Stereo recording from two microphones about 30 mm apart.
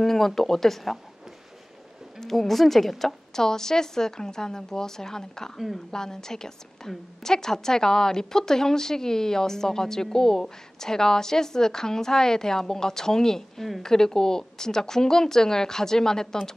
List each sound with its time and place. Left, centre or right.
0.0 s a woman's voice: centre
2.1 s a woman's voice: centre
3.3 s a woman's voice: centre